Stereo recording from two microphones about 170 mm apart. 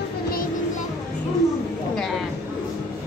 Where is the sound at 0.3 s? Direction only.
55° left (ahead or behind).